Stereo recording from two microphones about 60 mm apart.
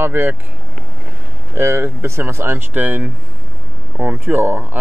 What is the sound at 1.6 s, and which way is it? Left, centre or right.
A man's voice, right.